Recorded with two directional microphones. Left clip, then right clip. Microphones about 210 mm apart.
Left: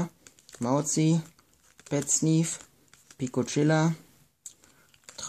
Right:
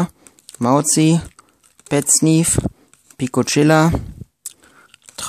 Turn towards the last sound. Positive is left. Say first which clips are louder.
# right 10 dB
turn(degrees=-35)  # may be behind; listen again after turning